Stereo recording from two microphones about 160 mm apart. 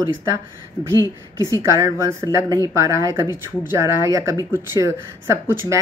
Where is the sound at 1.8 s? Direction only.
15° right (ahead or behind).